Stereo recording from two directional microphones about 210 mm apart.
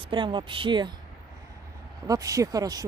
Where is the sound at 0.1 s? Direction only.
20° right (ahead or behind).